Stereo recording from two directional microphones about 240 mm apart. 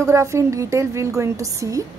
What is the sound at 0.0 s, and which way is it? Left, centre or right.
A woman's voice, centre.